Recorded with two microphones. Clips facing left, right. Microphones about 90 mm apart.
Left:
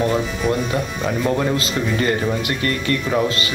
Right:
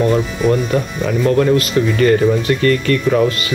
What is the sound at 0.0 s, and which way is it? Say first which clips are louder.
Speech: right 5 dB; centre (ahead or behind).